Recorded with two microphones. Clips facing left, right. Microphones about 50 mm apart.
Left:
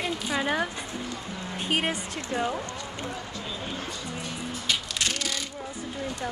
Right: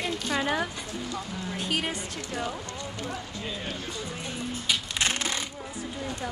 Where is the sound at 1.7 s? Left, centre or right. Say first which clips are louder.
Left 5 dB; left.